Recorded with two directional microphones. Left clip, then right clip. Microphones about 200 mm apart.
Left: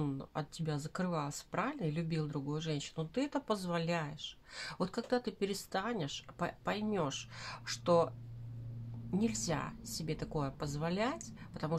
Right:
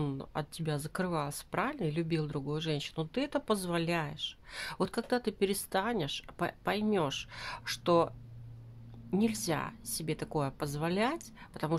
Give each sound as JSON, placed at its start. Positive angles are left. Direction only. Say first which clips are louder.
{"t": 0.0, "sound": "speech", "louder": "right 3 dB", "side_deg": -40}
{"t": 9.1, "sound": "speech", "louder": "right 4 dB", "side_deg": -40}